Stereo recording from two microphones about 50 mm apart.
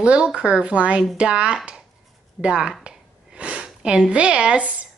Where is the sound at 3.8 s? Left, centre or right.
Centre.